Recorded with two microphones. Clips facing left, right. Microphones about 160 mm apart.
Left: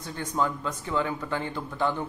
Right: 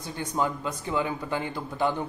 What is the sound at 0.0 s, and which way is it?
Speech, 10° right (ahead or behind).